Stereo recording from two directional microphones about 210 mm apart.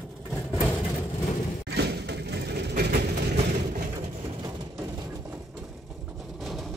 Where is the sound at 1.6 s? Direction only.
50° right (ahead or behind).